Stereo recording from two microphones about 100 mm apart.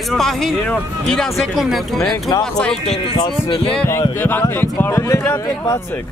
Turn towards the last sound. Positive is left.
turn(degrees=25)  # may be behind; listen again after turning